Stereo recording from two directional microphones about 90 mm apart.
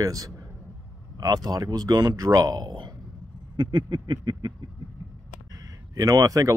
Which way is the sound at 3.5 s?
55° right (ahead or behind).